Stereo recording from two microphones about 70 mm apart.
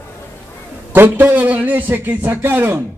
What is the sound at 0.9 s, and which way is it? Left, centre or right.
A man's voice, right.